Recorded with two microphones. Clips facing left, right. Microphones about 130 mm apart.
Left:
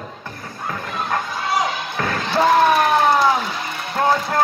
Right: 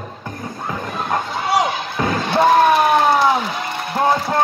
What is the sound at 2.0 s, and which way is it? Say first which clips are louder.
Slam: right 4 dB; 20° right (ahead or behind).